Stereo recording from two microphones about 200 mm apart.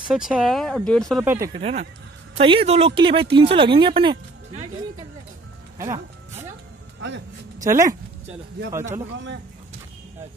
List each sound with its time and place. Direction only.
0.1 s speech: centre (ahead or behind)
1.2 s speech: 10° right (ahead or behind)
1.5 s speech: 30° right (ahead or behind)
7.0 s speech: 65° right (ahead or behind)
7.6 s speech: 15° right (ahead or behind)